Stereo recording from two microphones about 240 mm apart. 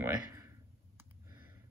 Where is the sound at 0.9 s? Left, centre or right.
Centre.